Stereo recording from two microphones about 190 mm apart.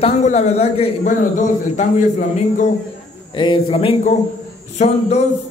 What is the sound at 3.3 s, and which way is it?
Speech, 25° left (ahead or behind).